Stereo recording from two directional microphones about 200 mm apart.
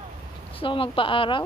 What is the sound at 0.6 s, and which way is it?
Speech, 25° left (ahead or behind).